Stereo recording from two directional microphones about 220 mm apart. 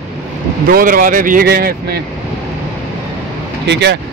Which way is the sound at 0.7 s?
40° right (ahead or behind).